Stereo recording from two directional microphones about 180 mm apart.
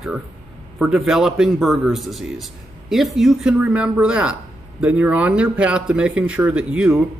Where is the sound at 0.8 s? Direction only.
5° right (ahead or behind).